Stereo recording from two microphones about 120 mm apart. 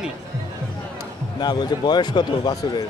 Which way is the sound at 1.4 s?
35° left (ahead or behind).